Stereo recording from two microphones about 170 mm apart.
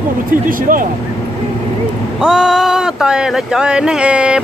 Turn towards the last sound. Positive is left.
turn(degrees=-5)  # may be behind; listen again after turning